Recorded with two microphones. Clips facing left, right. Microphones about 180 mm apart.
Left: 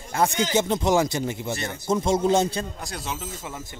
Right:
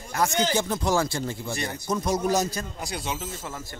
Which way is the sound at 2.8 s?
Centre (ahead or behind).